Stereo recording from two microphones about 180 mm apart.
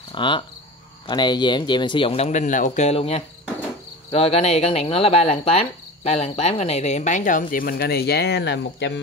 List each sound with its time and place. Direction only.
0.1 s cricket: 25° left (ahead or behind)
1.0 s speech: 25° left (ahead or behind); by 9.0 s 75° left (ahead or behind)